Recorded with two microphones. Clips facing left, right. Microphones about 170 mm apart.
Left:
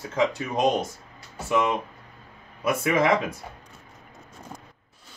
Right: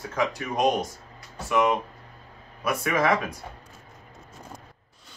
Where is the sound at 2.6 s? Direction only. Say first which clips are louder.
Left 2 dB; 25° left (ahead or behind).